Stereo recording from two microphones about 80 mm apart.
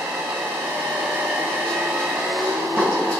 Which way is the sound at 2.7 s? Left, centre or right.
Centre.